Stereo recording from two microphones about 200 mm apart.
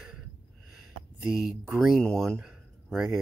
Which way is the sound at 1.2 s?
Centre (ahead or behind).